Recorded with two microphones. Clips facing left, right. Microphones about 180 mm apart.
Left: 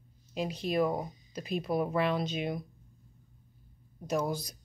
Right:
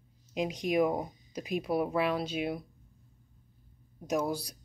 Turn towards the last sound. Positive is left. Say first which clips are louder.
# right 1 dB
turn(degrees=-10)  # may be behind; listen again after turning